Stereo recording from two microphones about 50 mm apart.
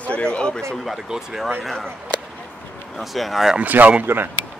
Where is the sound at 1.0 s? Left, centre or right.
Centre.